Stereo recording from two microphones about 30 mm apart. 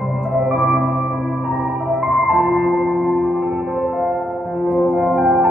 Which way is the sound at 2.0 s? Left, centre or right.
Centre.